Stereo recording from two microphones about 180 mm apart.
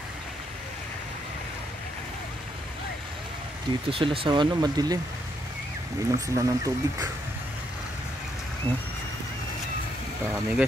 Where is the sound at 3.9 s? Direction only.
30° right (ahead or behind).